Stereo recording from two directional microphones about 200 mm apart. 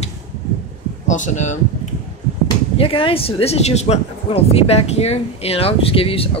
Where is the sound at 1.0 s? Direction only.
40° left (ahead or behind).